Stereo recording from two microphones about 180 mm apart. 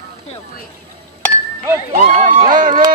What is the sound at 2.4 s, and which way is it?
Speech, 50° right (ahead or behind).